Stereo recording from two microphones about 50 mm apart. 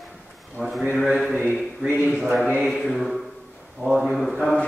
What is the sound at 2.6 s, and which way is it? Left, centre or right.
A man's voice, centre.